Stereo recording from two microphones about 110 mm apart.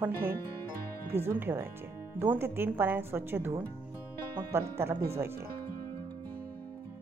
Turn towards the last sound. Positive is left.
turn(degrees=-20)  # may be behind; listen again after turning